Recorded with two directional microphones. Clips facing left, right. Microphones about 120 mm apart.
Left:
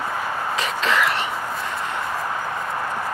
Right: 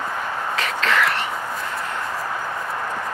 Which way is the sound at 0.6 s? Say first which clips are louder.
Right 1 dB; 15° left (ahead or behind).